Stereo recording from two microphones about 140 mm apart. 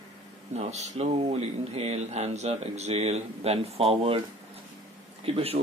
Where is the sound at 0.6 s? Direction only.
50° right (ahead or behind).